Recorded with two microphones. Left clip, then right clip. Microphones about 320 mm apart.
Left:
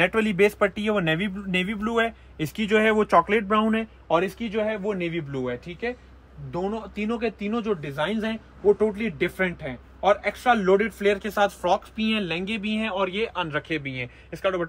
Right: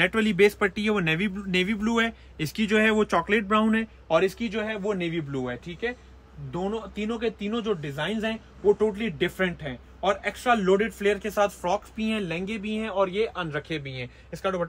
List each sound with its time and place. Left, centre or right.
0.1 s a man's voice: centre; by 14.6 s left